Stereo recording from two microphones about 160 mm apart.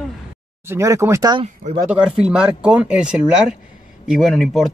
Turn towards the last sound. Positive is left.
turn(degrees=0)  # may be behind; listen again after turning